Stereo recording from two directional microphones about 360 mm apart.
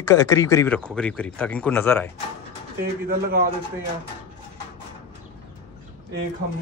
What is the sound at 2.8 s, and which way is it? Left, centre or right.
Speech, right.